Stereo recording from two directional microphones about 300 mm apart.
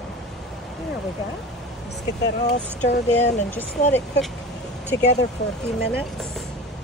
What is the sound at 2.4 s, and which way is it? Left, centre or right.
Speech, left.